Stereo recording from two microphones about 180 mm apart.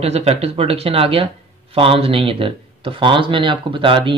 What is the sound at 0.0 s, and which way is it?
Speech, 35° right (ahead or behind).